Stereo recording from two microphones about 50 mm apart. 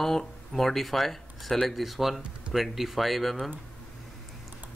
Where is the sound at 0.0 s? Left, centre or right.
Centre.